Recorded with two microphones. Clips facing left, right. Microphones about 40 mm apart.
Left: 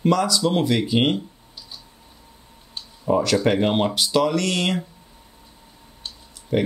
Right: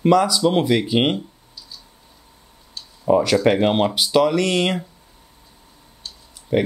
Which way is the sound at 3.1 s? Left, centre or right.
Centre.